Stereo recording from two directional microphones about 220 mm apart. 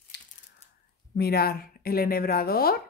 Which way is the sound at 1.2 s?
45° left (ahead or behind).